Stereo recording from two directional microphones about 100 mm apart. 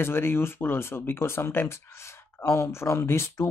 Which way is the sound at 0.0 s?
25° left (ahead or behind).